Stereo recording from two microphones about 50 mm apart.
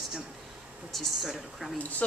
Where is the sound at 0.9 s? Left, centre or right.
Centre.